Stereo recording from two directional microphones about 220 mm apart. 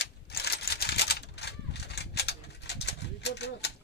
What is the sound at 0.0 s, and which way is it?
Typewriter, 50° left (ahead or behind).